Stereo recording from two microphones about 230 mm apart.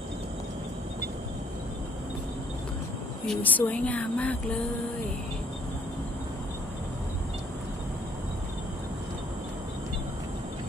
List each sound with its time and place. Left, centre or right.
3.3 s speech: centre